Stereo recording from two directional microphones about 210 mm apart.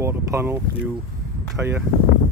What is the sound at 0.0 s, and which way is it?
Speech, 10° right (ahead or behind).